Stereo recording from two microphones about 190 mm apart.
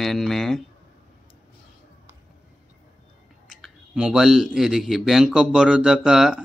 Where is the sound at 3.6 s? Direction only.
5° right (ahead or behind).